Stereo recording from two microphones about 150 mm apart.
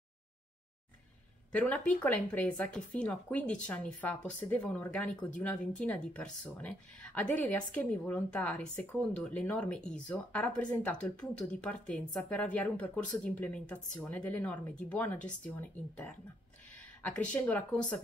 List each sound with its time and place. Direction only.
1.5 s speech: 10° left (ahead or behind)
17.0 s speech: 10° left (ahead or behind)